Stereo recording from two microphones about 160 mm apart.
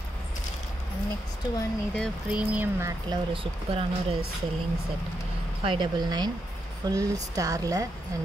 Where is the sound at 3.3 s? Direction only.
35° right (ahead or behind).